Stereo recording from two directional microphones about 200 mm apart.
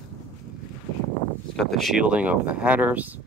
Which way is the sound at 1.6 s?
Centre (ahead or behind).